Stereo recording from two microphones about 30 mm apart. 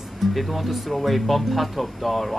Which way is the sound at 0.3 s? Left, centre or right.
Centre.